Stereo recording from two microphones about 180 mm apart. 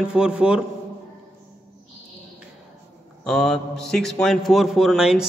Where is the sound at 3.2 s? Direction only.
5° left (ahead or behind).